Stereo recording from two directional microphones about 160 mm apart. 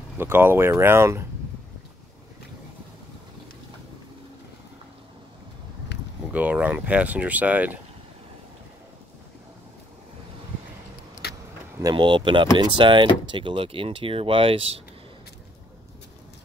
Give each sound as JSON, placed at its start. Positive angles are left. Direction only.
{"t": 0.2, "sound": "speech", "side_deg": -15}
{"t": 6.3, "sound": "speech", "side_deg": -10}
{"t": 11.2, "sound": "keys jangling", "side_deg": 80}
{"t": 11.8, "sound": "speech", "side_deg": -30}